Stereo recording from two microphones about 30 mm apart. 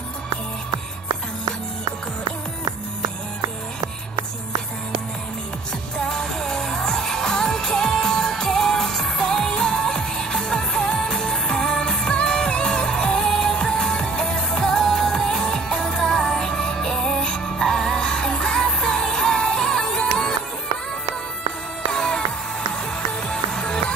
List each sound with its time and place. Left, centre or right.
6.0 s music: centre
9.1 s music of asia: left
9.5 s music: centre
13.3 s music: centre
13.6 s music: left
21.9 s music: centre
23.2 s music: left